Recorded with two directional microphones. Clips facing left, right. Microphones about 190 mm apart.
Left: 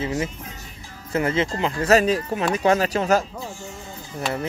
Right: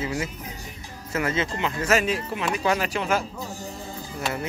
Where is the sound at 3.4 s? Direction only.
40° right (ahead or behind).